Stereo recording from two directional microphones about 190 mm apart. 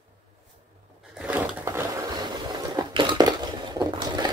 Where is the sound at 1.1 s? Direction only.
10° right (ahead or behind).